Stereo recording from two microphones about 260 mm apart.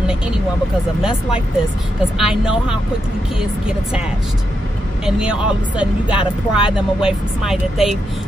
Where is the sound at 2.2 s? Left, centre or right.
Centre.